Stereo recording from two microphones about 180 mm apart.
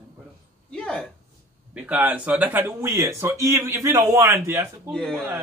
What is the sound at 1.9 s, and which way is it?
A man's voice, 5° right (ahead or behind).